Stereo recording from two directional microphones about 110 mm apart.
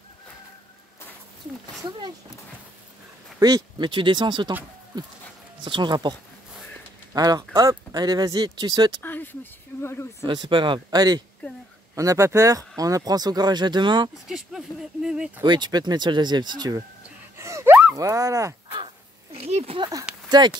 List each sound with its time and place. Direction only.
1.8 s speech: 40° right (ahead or behind)
3.3 s speech: 35° right (ahead or behind)
7.2 s speech: 35° right (ahead or behind)
9.0 s speech: 15° left (ahead or behind)
10.2 s speech: 45° right (ahead or behind)
14.3 s speech: 5° right (ahead or behind)
15.4 s speech: 40° right (ahead or behind)
17.4 s a sound: 25° right (ahead or behind)
17.9 s speech: 30° right (ahead or behind)
19.3 s a sound: 70° right (ahead or behind)
19.8 s speech: 30° right (ahead or behind)